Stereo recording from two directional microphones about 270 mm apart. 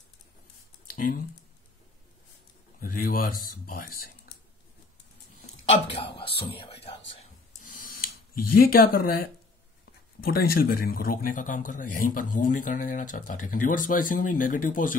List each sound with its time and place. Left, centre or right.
0.9 s speech: left
2.8 s speech: left
5.9 s speech: centre
7.1 s a sound: left
8.5 s speech: left